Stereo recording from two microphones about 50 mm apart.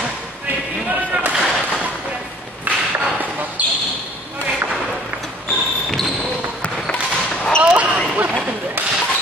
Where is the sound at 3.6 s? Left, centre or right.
Right.